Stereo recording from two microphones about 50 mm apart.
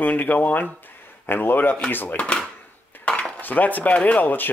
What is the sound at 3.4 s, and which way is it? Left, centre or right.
Speech, left.